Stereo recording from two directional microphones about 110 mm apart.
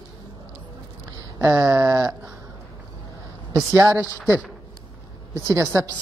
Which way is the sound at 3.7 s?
30° right (ahead or behind).